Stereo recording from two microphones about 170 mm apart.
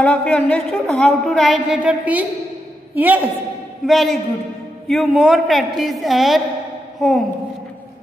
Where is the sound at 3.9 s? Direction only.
Centre (ahead or behind).